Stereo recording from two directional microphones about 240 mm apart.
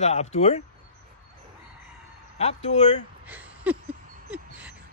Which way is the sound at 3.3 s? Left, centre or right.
Centre.